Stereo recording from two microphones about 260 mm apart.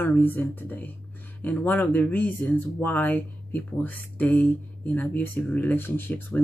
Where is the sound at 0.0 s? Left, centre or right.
Centre.